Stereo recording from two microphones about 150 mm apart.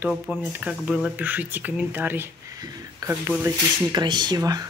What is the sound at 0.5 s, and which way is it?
Speech, 5° right (ahead or behind).